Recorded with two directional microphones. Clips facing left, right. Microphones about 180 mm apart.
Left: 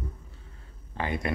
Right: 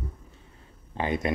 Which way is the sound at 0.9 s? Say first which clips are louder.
Right 3 dB; 20° right (ahead or behind).